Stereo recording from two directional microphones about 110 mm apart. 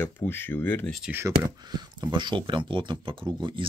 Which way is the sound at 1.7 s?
40° right (ahead or behind).